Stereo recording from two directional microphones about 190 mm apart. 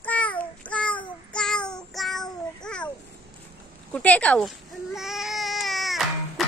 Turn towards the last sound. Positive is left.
turn(degrees=0)  # may be behind; listen again after turning